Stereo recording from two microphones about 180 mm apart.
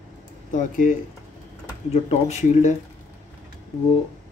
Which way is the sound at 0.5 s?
45° left (ahead or behind).